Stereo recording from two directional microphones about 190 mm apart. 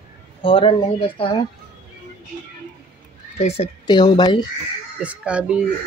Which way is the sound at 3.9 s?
20° left (ahead or behind).